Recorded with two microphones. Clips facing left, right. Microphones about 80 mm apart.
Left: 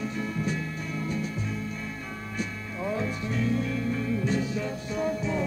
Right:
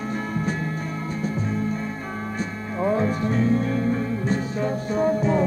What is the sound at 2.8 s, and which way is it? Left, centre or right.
Music, right.